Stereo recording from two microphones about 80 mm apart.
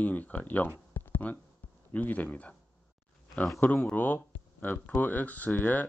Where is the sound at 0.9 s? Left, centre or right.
Left.